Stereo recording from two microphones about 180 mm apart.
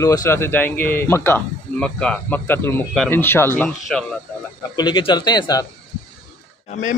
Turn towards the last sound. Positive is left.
turn(degrees=45)  # may be behind; listen again after turning